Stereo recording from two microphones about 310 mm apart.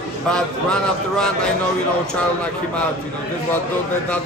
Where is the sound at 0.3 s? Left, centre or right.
Centre.